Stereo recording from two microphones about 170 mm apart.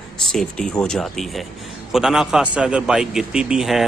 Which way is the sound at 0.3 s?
5° left (ahead or behind).